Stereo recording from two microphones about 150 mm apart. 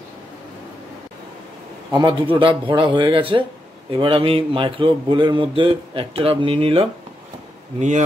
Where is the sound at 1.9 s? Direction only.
35° right (ahead or behind).